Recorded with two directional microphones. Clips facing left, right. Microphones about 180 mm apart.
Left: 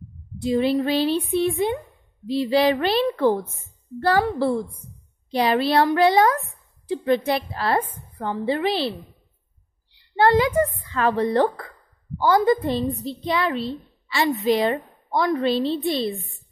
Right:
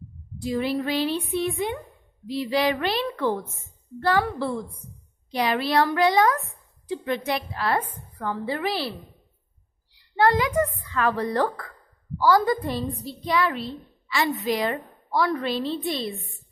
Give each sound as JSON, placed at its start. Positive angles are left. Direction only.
{"t": 0.4, "sound": "a woman's voice", "side_deg": 25}
{"t": 9.9, "sound": "a woman's voice", "side_deg": 30}